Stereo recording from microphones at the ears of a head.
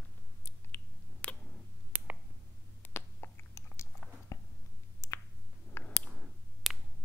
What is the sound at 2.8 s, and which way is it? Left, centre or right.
Chewing, left.